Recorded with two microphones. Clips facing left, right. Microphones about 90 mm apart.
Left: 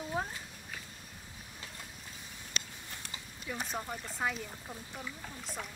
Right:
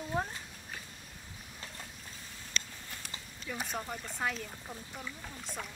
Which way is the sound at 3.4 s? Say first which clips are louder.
Even; centre (ahead or behind).